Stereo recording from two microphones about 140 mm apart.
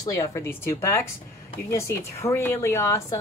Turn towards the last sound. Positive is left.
turn(degrees=20)  # may be behind; listen again after turning